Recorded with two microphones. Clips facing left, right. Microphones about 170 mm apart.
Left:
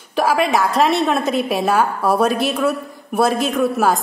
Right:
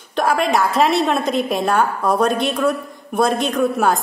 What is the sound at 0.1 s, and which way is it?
A woman's voice, 5° left (ahead or behind).